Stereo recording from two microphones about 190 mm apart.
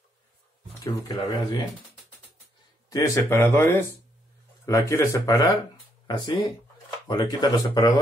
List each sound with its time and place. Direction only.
0.9 s speech: 20° left (ahead or behind)
2.9 s speech: 15° left (ahead or behind)